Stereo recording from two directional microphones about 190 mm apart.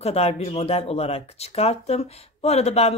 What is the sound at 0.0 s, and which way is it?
Speech, 35° left (ahead or behind).